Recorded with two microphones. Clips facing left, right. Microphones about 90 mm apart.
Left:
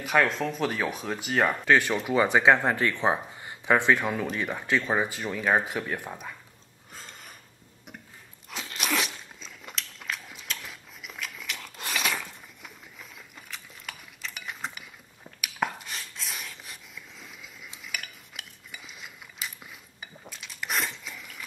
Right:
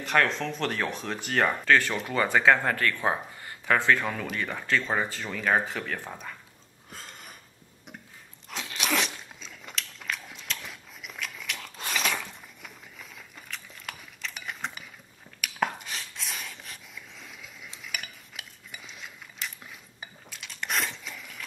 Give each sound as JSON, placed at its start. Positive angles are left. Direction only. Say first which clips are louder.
{"t": 0.0, "sound": "speech", "louder": "left 1 dB", "side_deg": 5}
{"t": 1.7, "sound": "speech", "louder": "left 1 dB", "side_deg": 15}
{"t": 6.9, "sound": "a sound", "louder": "right 1 dB", "side_deg": 0}
{"t": 8.5, "sound": "crunch", "louder": "right 1 dB", "side_deg": 0}
{"t": 15.4, "sound": "a sound", "louder": "right 1 dB", "side_deg": 0}
{"t": 17.8, "sound": "cutlery", "louder": "even", "side_deg": 0}